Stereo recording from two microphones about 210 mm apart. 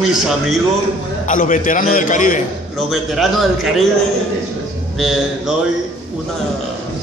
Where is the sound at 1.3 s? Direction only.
40° left (ahead or behind).